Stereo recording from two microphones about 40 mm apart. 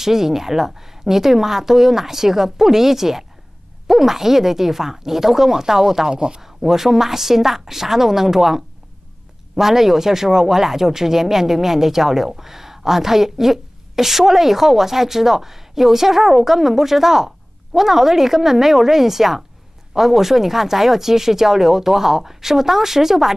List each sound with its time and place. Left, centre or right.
0.0 s speech: centre
6.4 s speech: centre